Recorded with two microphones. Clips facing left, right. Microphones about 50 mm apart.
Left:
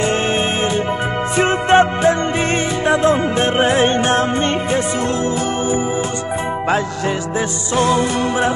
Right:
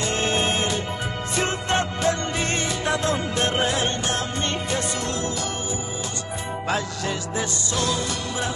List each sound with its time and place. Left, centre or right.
0.0 s music: left
7.3 s music: left